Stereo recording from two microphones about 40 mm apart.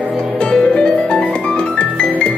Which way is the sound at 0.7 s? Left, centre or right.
Left.